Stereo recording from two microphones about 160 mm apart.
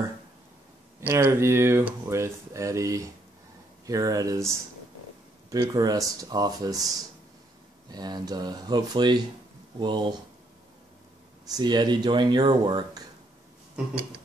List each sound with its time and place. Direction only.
1.0 s speech: 15° right (ahead or behind)
5.5 s speech: 25° right (ahead or behind)
7.9 s speech: 25° right (ahead or behind)
11.5 s speech: 25° right (ahead or behind)